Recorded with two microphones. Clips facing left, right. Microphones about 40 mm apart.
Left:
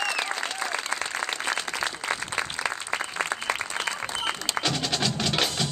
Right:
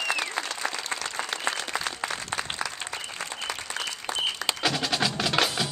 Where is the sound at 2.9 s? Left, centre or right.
Left.